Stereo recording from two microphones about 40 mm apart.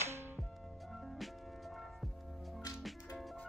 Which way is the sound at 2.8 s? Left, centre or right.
Centre.